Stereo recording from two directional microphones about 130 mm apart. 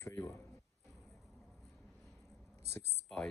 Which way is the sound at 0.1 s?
15° left (ahead or behind).